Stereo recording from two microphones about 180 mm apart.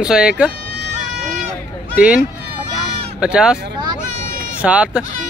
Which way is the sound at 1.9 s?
5° right (ahead or behind).